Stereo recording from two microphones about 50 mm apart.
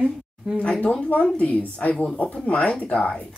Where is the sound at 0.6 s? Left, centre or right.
Left.